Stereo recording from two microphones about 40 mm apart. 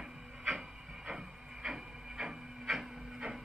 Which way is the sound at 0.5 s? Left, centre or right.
Centre.